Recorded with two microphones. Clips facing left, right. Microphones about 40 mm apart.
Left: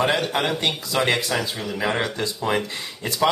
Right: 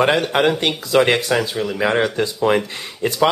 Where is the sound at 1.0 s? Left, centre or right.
Right.